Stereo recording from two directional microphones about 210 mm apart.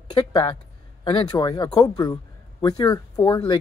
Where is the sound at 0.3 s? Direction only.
25° left (ahead or behind).